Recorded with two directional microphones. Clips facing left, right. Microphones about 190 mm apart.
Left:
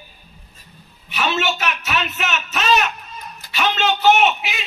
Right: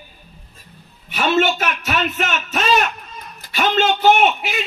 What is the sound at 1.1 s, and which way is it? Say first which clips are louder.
A man's voice: right 5 dB; 50° right (ahead or behind).